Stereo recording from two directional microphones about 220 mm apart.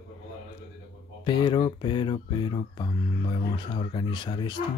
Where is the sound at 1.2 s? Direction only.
20° left (ahead or behind).